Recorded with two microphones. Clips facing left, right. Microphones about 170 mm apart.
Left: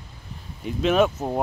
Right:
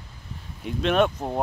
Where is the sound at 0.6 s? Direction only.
Centre (ahead or behind).